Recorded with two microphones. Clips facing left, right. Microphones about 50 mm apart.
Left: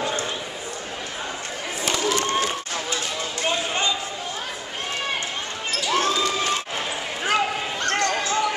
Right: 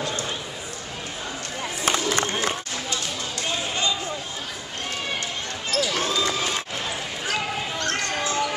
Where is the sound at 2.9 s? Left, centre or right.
Left.